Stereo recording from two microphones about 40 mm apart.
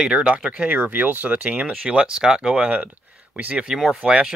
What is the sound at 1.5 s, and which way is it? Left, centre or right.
Speech, right.